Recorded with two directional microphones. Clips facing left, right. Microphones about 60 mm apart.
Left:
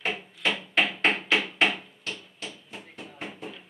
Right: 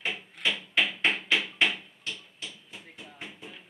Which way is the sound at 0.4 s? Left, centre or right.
Left.